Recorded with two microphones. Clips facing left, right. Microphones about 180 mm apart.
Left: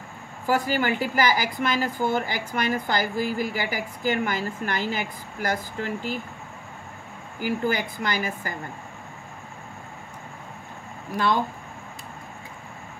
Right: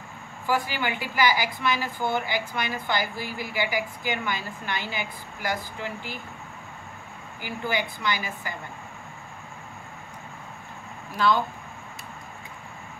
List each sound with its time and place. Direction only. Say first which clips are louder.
0.5 s a woman's voice: left 4 dB; 45° left (ahead or behind)
7.3 s a woman's voice: left 4 dB; 45° left (ahead or behind)